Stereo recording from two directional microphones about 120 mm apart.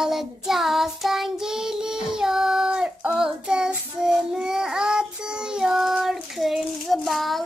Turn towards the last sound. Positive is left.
turn(degrees=0)  # may be behind; listen again after turning